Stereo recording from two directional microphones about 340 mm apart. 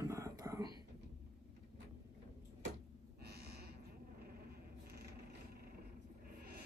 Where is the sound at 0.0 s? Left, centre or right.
Centre.